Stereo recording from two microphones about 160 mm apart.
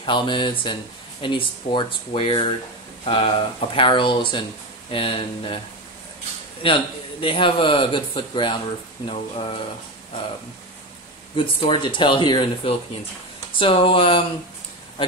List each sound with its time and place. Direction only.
0.0 s a man's voice: 30° left (ahead or behind)
6.6 s a man's voice: 35° left (ahead or behind)
11.3 s a man's voice: 30° left (ahead or behind)